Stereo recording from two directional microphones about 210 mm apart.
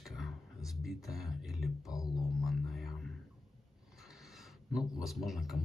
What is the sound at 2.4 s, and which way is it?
Music, centre (ahead or behind).